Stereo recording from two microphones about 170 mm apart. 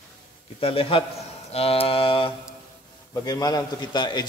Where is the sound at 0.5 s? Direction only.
35° left (ahead or behind).